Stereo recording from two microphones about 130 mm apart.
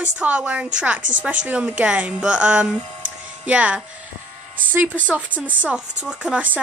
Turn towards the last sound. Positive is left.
turn(degrees=-10)  # may be behind; listen again after turning